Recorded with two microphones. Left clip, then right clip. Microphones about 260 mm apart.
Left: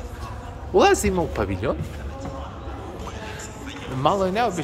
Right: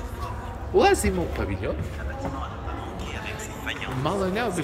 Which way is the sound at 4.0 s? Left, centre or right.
Centre.